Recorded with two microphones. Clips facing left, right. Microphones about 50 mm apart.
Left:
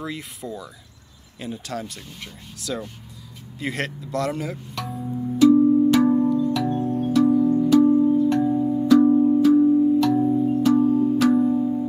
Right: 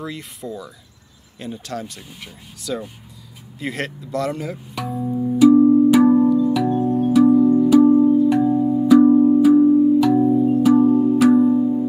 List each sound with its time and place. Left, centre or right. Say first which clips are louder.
0.0 s speech: right 1 dB; centre
4.7 s music: right 8 dB; centre
5.6 s music: right 4 dB; right
5.9 s music: right 4 dB; centre